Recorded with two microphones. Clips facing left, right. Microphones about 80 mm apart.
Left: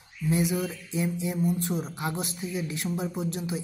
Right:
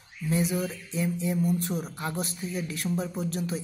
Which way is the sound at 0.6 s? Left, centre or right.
Left.